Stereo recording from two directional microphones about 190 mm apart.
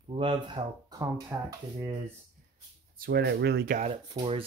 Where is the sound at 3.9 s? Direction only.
25° right (ahead or behind).